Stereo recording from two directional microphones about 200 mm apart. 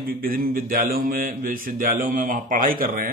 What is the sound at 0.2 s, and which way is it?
Speech, 45° right (ahead or behind).